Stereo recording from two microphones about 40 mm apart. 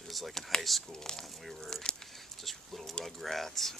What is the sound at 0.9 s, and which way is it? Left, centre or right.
Speech, centre.